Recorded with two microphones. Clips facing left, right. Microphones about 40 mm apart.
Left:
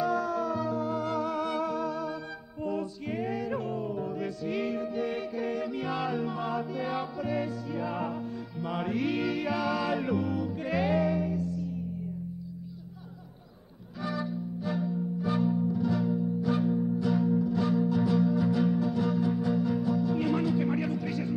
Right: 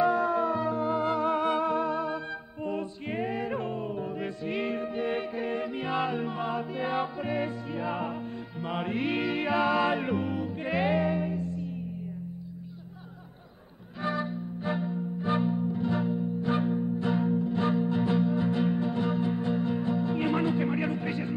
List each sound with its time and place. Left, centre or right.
0.0 s music: right
14.0 s music: right